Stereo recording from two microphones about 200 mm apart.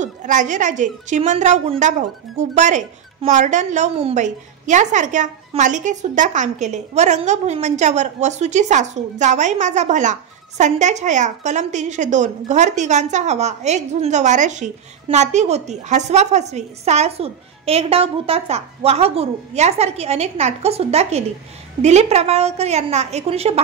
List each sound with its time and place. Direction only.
0.0 s a woman's voice: 40° right (ahead or behind)